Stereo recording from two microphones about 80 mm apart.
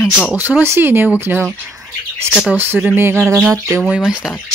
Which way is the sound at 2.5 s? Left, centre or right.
Right.